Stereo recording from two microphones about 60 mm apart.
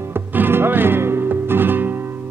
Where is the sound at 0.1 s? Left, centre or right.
Right.